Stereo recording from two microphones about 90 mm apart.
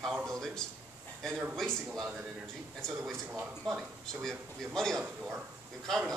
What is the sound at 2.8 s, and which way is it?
A man's voice, 5° left (ahead or behind).